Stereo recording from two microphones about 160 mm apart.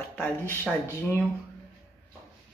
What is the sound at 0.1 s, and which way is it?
Speech, 5° left (ahead or behind).